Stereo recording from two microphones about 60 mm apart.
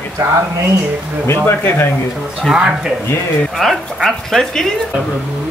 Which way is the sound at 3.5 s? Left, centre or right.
Centre.